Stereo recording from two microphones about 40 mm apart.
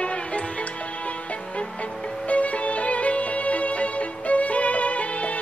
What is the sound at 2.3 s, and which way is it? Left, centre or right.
Music, left.